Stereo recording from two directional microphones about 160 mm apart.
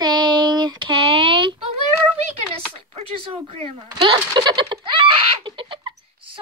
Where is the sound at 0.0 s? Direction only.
25° right (ahead or behind).